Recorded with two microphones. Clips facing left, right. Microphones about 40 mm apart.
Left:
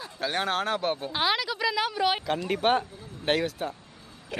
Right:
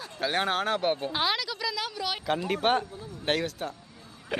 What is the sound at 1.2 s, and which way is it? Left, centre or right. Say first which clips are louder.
Speech: left 6 dB; centre.